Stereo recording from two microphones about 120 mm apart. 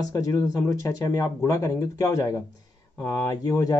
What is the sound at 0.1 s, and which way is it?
Speech, 30° left (ahead or behind).